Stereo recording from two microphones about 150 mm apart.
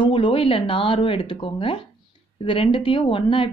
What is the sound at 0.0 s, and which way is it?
A woman's voice, 35° left (ahead or behind).